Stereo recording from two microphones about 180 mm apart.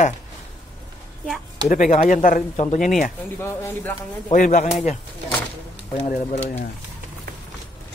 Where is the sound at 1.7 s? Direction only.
45° left (ahead or behind).